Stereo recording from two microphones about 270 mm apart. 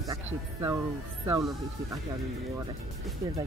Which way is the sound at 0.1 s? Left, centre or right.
Centre.